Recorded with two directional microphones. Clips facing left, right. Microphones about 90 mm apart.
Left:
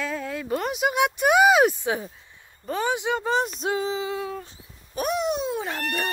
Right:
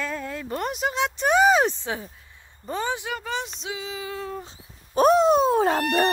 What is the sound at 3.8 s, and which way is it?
Speech, 25° left (ahead or behind).